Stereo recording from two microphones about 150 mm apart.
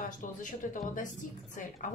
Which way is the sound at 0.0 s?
60° left (ahead or behind).